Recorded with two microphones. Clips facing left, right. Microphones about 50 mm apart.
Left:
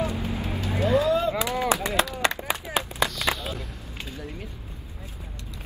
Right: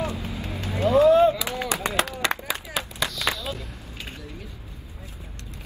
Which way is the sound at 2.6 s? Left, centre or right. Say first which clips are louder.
Left 3 dB; left.